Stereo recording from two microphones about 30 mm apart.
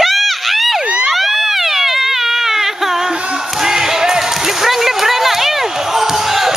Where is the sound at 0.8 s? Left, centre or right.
Right.